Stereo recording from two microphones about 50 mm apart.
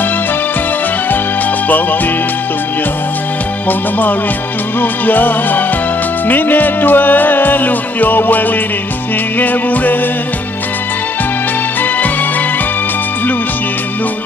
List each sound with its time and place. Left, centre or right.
4.7 s music: left